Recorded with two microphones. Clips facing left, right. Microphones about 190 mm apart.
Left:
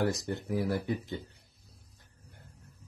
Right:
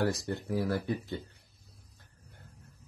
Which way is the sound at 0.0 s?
20° left (ahead or behind).